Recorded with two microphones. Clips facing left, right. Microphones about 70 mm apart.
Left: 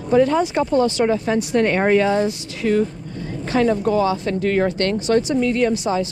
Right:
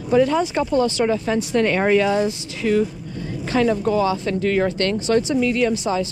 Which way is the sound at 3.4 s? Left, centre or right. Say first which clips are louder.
Left 1 dB; left.